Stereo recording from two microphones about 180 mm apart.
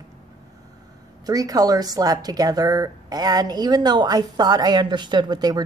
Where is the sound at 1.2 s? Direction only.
20° right (ahead or behind).